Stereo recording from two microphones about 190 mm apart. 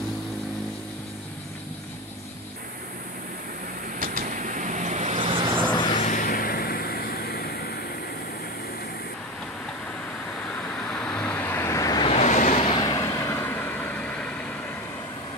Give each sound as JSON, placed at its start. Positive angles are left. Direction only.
{"t": 4.0, "sound": "vehicle", "side_deg": -50}
{"t": 5.9, "sound": "vehicle", "side_deg": 45}
{"t": 10.9, "sound": "vehicle", "side_deg": 5}
{"t": 12.1, "sound": "vehicle", "side_deg": 35}
{"t": 12.8, "sound": "vehicle", "side_deg": 20}